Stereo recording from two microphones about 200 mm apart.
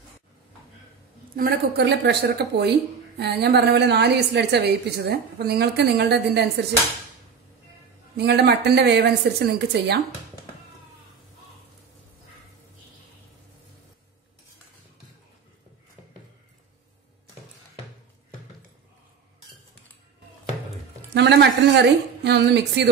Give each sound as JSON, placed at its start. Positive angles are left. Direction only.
{"t": 1.3, "sound": "a woman's voice", "side_deg": -50}
{"t": 8.2, "sound": "a woman's voice", "side_deg": -55}
{"t": 21.1, "sound": "a sound", "side_deg": -60}